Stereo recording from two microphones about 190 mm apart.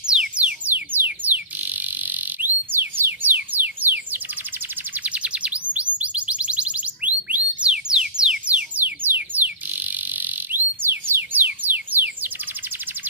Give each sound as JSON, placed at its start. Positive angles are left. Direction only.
{"t": 0.0, "sound": "music", "side_deg": -5}
{"t": 4.9, "sound": "bird", "side_deg": -5}
{"t": 11.6, "sound": "music", "side_deg": -10}